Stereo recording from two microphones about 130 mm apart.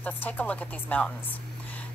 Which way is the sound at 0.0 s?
10° left (ahead or behind).